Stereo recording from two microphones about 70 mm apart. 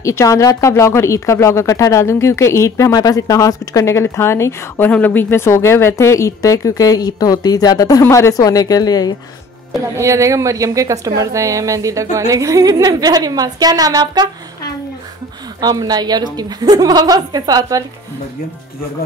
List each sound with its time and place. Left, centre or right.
0.0 s speech: left
2.9 s speech: left
4.7 s speech: left
5.3 s speech: left
8.1 s a woman's voice: left
9.9 s a woman's voice: right
15.6 s a woman's voice: right